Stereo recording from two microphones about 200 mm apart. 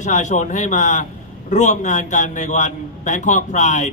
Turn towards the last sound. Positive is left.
turn(degrees=35)  # may be behind; listen again after turning